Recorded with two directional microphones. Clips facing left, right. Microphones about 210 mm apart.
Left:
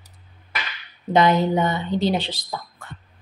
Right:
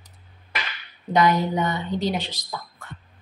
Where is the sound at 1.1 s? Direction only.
25° left (ahead or behind).